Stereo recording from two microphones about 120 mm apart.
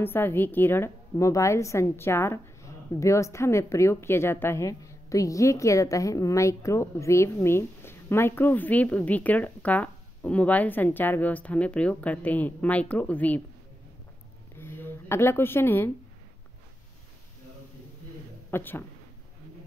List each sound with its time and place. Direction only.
0.0 s a woman's voice: 20° left (ahead or behind)
14.6 s a sound: 20° left (ahead or behind)
18.5 s speech: 15° left (ahead or behind)